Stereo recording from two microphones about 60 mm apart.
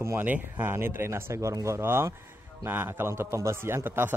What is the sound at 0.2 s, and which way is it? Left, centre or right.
A man's voice, right.